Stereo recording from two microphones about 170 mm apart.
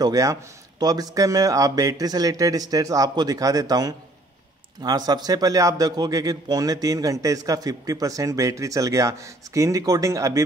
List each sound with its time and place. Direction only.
0.0 s a man's voice: 20° right (ahead or behind)